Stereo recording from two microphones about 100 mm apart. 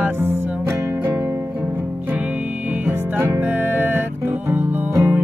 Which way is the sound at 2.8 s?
25° right (ahead or behind).